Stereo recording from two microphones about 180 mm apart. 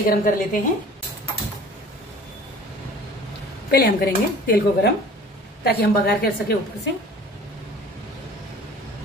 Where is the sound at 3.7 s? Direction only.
55° left (ahead or behind).